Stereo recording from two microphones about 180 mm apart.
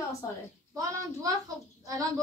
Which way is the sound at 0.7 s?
20° right (ahead or behind).